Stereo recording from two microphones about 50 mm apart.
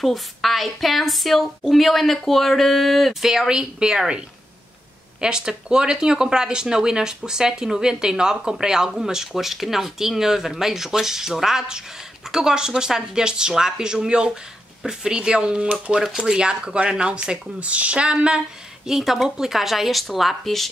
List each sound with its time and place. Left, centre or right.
0.0 s a woman's voice: centre
5.2 s speech: centre
18.9 s a woman's voice: centre